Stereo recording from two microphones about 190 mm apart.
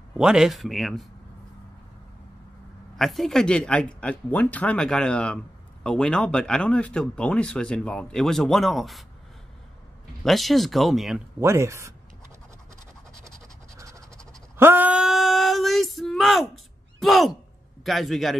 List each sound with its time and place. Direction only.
0.2 s speech: 5° right (ahead or behind)
3.0 s speech: centre (ahead or behind)
10.2 s speech: centre (ahead or behind)
11.3 s speech: 15° right (ahead or behind)
13.7 s a sound: 15° right (ahead or behind); by 16.4 s centre (ahead or behind)
17.0 s speech: centre (ahead or behind)